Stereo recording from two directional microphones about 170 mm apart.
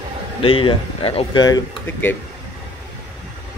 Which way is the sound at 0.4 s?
30° left (ahead or behind).